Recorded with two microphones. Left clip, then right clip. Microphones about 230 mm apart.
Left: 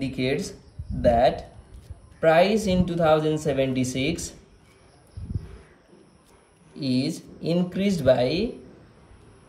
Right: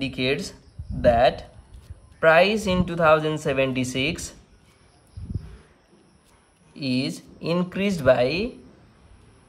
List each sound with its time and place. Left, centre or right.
0.0 s speech: centre
5.2 s a sound: centre
6.7 s speech: centre